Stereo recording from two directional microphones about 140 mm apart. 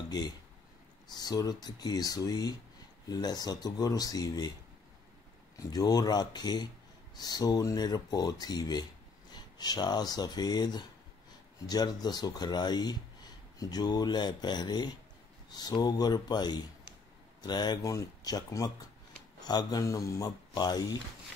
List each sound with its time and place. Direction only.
1.0 s speech: 30° left (ahead or behind)
5.6 s speech: 25° left (ahead or behind)